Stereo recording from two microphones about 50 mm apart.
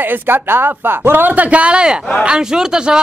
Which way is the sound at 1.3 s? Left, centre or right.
Right.